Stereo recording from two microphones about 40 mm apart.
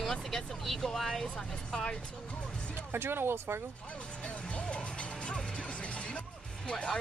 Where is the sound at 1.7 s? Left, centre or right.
Left.